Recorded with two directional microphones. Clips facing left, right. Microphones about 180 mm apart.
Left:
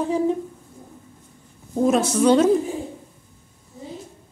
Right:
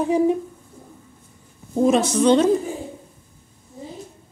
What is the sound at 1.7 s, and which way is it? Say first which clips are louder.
Speech: right 1 dB; centre (ahead or behind).